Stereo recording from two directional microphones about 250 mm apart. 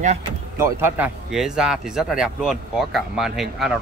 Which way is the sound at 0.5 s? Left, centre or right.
Centre.